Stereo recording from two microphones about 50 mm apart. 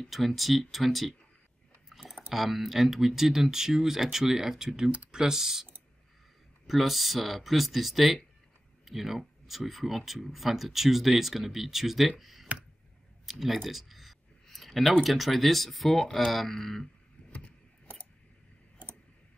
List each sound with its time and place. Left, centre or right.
0.0 s speech: centre
6.7 s speech: centre
12.2 s a sound: centre
13.3 s speech: centre
13.7 s a sound: centre
15.0 s speech: centre
17.3 s vehicle: left